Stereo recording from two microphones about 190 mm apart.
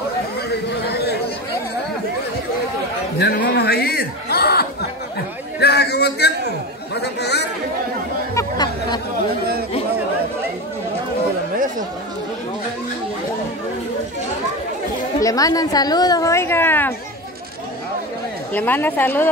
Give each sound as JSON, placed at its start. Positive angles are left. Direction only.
{"t": 0.8, "sound": "chatter", "side_deg": 60}
{"t": 3.2, "sound": "chuckle", "side_deg": 55}
{"t": 5.6, "sound": "a sound", "side_deg": 60}
{"t": 7.0, "sound": "chatter", "side_deg": 60}
{"t": 8.4, "sound": "a sound", "side_deg": 20}
{"t": 15.1, "sound": "a woman's voice", "side_deg": 20}
{"t": 18.5, "sound": "a woman's voice", "side_deg": 10}